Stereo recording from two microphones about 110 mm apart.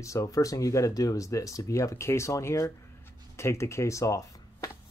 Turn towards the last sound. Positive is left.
turn(degrees=30)  # may be behind; listen again after turning